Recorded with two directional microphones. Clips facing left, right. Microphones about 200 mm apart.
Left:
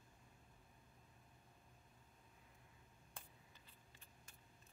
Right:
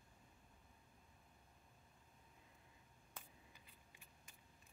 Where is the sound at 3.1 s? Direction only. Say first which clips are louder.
Right 1 dB; 15° right (ahead or behind).